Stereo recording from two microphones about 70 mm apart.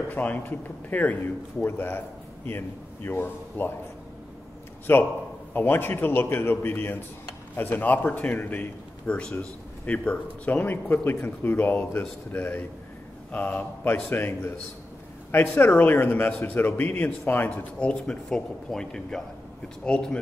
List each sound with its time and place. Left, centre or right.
0.1 s a man's voice: left
4.9 s a man's voice: left
14.0 s a man's voice: left
15.9 s a man's voice: left
17.5 s speech: centre